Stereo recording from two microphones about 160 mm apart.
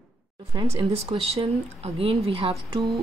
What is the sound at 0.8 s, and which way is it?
Speech, 35° right (ahead or behind).